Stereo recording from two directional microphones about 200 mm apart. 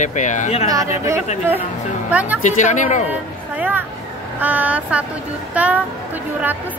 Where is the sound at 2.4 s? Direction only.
40° left (ahead or behind).